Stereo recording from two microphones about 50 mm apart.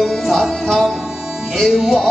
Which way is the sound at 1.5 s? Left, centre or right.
Centre.